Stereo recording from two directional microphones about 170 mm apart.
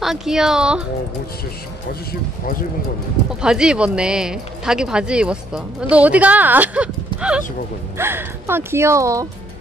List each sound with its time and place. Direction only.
0.0 s speech: centre (ahead or behind)
3.3 s speech: 5° right (ahead or behind)